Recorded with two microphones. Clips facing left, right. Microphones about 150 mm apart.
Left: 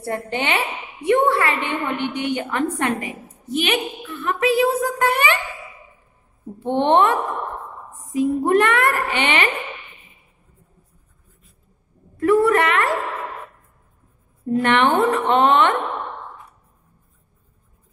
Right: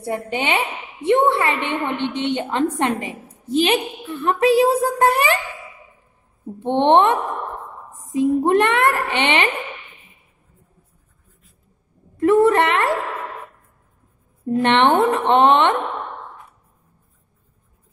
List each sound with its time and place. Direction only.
0.0 s a woman's voice: 15° right (ahead or behind); by 5.4 s 30° right (ahead or behind)
6.6 s a woman's voice: 20° right (ahead or behind)
12.2 s a sound: 25° right (ahead or behind)
14.6 s a woman's voice: 25° right (ahead or behind)